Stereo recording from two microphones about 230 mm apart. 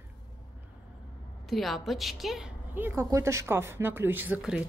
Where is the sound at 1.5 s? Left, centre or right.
Centre.